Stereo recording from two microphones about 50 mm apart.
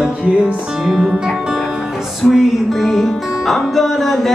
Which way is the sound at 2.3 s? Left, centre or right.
Centre.